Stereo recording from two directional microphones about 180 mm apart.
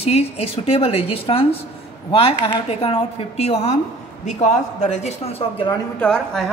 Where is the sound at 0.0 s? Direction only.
35° left (ahead or behind).